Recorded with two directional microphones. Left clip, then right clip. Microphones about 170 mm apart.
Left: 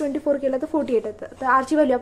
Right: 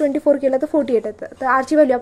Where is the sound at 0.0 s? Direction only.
25° right (ahead or behind).